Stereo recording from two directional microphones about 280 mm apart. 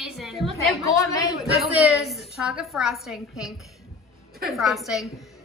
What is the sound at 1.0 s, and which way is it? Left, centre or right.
Speech, centre.